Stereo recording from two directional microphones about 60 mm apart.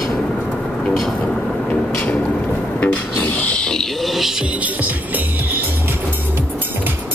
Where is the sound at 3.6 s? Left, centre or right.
Centre.